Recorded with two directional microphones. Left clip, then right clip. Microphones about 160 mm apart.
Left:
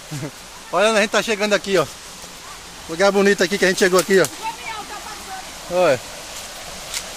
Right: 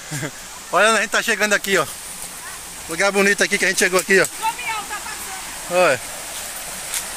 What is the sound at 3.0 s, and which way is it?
Speech, 25° left (ahead or behind).